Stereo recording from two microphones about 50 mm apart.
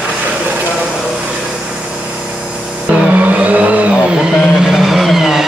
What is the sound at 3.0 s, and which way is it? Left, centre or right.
Vehicle, right.